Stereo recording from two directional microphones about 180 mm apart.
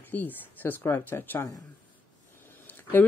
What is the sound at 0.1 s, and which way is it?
Speech, 10° left (ahead or behind).